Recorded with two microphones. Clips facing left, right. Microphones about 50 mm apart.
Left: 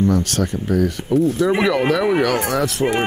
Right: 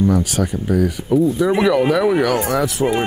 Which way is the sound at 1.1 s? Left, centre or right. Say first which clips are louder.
Right 1 dB; left.